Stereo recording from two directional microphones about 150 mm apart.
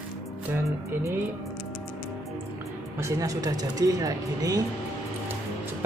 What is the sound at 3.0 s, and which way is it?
Speech, 20° right (ahead or behind).